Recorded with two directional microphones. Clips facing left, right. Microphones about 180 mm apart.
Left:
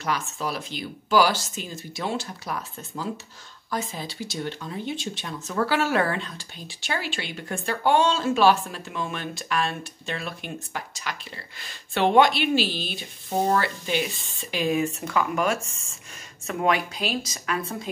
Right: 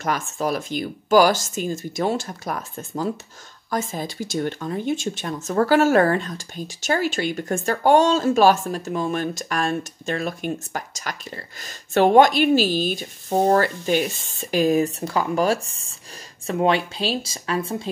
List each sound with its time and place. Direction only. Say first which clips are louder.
0.0 s speech: right 4 dB; 50° right (ahead or behind); by 17.7 s 30° right (ahead or behind)